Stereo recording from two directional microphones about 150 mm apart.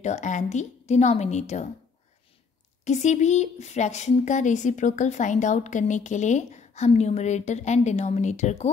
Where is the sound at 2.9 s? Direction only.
50° left (ahead or behind).